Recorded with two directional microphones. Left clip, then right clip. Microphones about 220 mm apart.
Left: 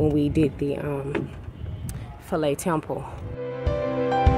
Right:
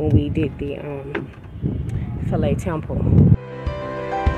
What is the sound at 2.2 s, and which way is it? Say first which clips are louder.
Speech: even; 10° left (ahead or behind).